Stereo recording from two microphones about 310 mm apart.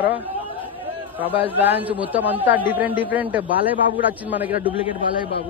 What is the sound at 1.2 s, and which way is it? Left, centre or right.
A man's voice, centre.